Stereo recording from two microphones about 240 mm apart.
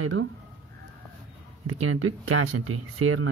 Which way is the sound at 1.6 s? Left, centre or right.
Right.